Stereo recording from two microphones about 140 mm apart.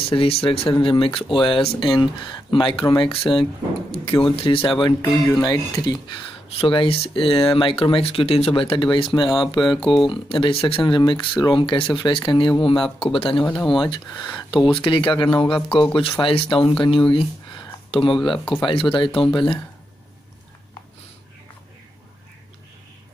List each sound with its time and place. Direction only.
0.0 s speech: 40° left (ahead or behind)
9.8 s speech: centre (ahead or behind)
10.0 s speech: 40° left (ahead or behind)